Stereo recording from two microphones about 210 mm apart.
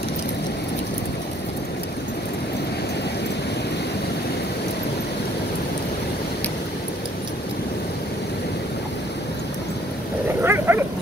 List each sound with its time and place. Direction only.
10.4 s dog: 10° right (ahead or behind)